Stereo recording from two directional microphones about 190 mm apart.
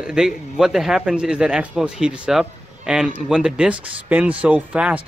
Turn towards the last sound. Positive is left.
turn(degrees=-10)  # may be behind; listen again after turning